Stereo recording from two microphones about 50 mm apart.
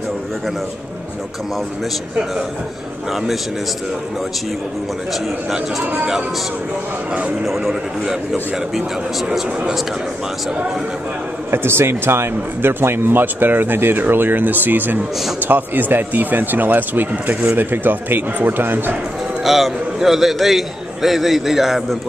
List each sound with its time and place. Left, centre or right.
3.1 s a man's voice: centre
7.4 s a man's voice: centre
11.5 s speech: right
19.4 s a man's voice: centre